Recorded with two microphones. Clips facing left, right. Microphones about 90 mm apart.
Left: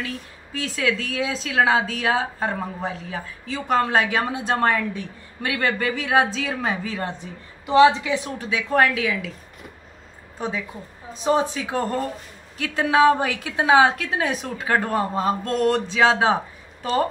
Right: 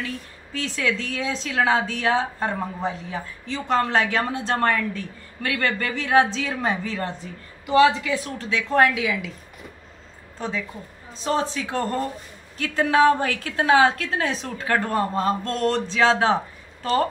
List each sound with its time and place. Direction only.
0.0 s a woman's voice: 5° left (ahead or behind)
7.6 s a woman's voice: 25° left (ahead or behind)
8.8 s a woman's voice: 5° right (ahead or behind)
10.4 s a woman's voice: 10° left (ahead or behind)